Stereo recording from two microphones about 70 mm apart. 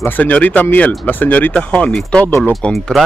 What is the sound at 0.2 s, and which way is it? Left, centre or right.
Speech, left.